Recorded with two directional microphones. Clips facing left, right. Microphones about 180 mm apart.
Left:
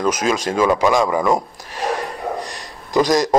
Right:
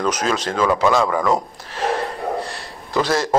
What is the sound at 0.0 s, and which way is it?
A man's voice, 10° left (ahead or behind).